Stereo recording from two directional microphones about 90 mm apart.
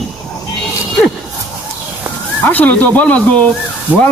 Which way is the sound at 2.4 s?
15° left (ahead or behind).